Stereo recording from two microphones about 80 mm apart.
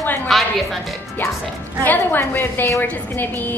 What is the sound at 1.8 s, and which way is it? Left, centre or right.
A woman's voice, left.